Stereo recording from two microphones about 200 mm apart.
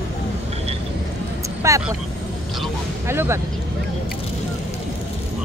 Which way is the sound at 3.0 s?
10° right (ahead or behind).